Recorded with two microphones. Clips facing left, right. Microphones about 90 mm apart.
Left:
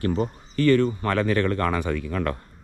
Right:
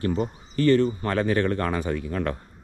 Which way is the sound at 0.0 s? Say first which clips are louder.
Left 1 dB; 40° left (ahead or behind).